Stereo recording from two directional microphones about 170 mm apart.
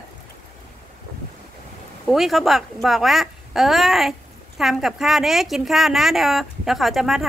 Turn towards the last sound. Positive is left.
turn(degrees=0)  # may be behind; listen again after turning